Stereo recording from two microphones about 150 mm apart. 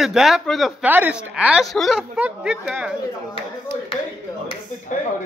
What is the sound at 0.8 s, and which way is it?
A woman's voice, 10° right (ahead or behind).